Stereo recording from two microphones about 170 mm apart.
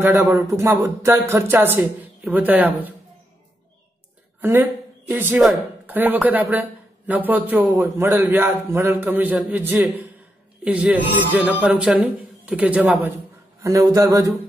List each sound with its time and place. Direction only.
0.0 s speech: 10° right (ahead or behind)
4.4 s speech: 10° right (ahead or behind)
13.6 s a man's voice: 20° right (ahead or behind)